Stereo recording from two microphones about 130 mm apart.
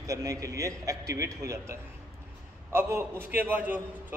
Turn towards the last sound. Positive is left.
turn(degrees=-15)  # may be behind; listen again after turning